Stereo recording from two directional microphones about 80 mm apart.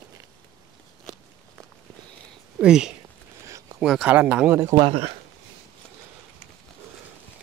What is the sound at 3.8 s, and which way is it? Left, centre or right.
Speech, centre.